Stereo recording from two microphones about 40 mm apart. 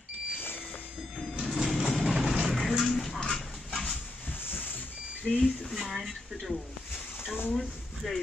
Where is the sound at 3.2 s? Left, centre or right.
Centre.